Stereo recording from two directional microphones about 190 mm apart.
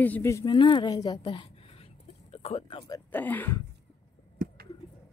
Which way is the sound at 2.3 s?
30° left (ahead or behind).